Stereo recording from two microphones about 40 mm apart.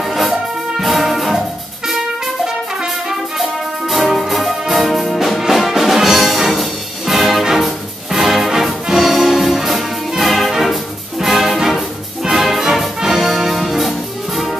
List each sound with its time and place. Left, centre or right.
0.0 s music: centre
3.9 s music: centre